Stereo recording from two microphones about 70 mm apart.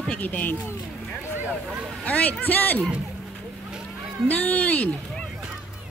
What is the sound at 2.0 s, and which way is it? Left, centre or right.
Speech, left.